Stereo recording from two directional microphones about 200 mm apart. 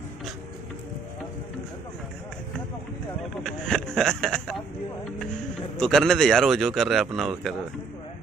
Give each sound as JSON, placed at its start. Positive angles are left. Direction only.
{"t": 3.4, "sound": "speech", "side_deg": 0}
{"t": 5.8, "sound": "speech", "side_deg": 0}